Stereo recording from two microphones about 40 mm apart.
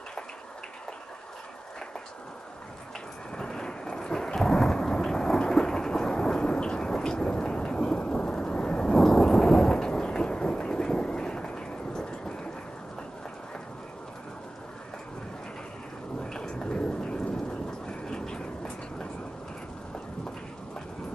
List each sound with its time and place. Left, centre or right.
3.3 s thunder: centre
8.9 s thunder: centre
16.3 s thunder: centre
18.0 s vehicle: centre